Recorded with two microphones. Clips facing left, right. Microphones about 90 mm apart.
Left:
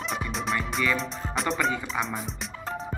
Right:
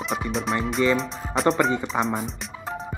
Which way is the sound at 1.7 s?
35° right (ahead or behind).